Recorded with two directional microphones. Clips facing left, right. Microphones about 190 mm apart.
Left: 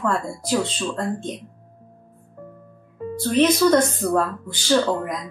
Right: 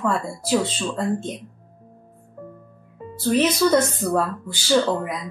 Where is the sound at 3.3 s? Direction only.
5° right (ahead or behind).